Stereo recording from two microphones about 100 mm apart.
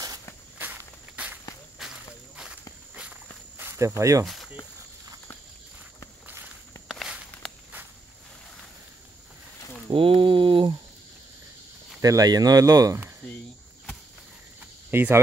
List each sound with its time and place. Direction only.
0.6 s walk: 15° right (ahead or behind)
1.8 s walk: 5° right (ahead or behind)
3.5 s speech: 25° right (ahead or behind)
6.2 s walk: 15° right (ahead or behind)
6.9 s walk: centre (ahead or behind)
9.8 s a sound: 60° right (ahead or behind)
12.0 s speech: 40° right (ahead or behind)
14.9 s speech: 20° right (ahead or behind)